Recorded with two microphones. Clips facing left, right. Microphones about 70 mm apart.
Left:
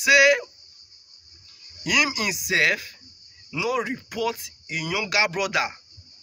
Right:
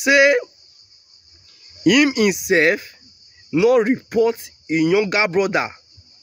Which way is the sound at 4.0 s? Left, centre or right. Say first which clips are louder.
Right 10 dB; right.